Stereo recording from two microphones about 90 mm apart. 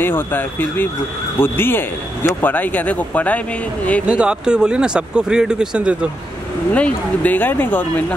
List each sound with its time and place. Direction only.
0.0 s a man's voice: 20° left (ahead or behind)
4.1 s speech: 10° right (ahead or behind)
6.7 s a man's voice: 20° left (ahead or behind)